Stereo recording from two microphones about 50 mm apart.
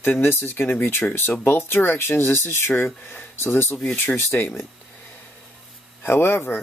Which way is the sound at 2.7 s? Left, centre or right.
Left.